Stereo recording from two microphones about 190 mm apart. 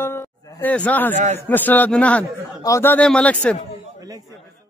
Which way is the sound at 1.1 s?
40° right (ahead or behind).